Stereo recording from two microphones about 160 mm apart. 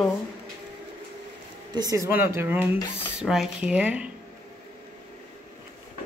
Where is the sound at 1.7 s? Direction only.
25° right (ahead or behind); by 4.1 s 10° right (ahead or behind).